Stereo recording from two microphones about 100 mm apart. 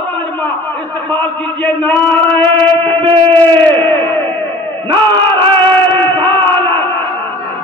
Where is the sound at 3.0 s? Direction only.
55° right (ahead or behind).